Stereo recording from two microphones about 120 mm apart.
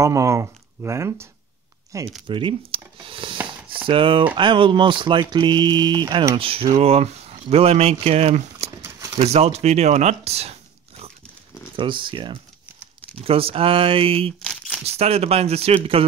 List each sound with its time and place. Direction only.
0.0 s speech: 25° right (ahead or behind)
2.2 s speech: 45° right (ahead or behind)
6.3 s speech: 50° right (ahead or behind)
11.7 s speech: 45° right (ahead or behind)
13.2 s speech: 50° right (ahead or behind)
14.4 s crumpling: centre (ahead or behind)
14.9 s speech: 60° right (ahead or behind)